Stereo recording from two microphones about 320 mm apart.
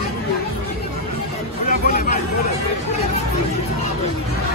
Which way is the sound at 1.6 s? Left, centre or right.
Left.